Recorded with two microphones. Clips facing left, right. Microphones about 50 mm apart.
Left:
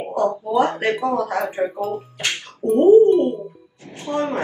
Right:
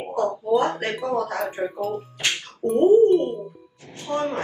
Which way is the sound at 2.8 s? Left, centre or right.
Left.